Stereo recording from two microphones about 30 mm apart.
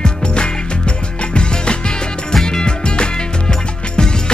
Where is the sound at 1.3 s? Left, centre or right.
Left.